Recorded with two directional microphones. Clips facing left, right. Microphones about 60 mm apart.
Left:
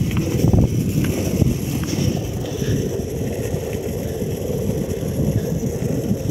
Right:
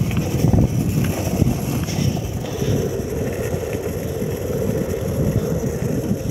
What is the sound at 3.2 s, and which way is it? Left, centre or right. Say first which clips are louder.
Vehicle: right 1 dB; right.